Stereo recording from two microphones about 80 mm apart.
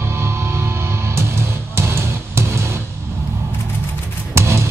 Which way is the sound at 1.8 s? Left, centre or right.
Right.